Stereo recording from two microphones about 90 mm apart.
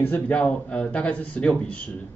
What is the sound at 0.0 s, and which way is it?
A man's voice, 20° left (ahead or behind).